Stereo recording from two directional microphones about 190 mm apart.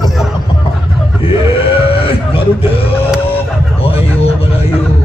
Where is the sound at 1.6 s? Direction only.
30° left (ahead or behind).